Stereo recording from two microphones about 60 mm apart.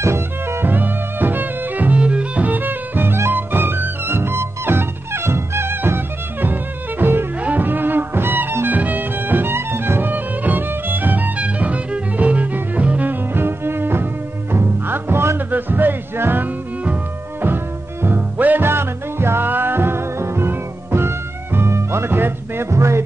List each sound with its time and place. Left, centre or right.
0.0 s music: right
0.7 s music: right
18.0 s music: right
18.6 s music: right
22.7 s music: right